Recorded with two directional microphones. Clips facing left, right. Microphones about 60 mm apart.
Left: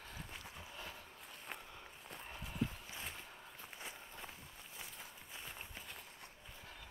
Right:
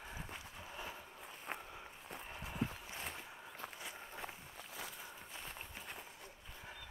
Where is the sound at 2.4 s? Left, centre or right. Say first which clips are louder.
Even; right.